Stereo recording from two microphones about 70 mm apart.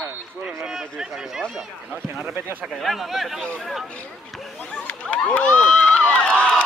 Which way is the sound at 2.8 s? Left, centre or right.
Centre.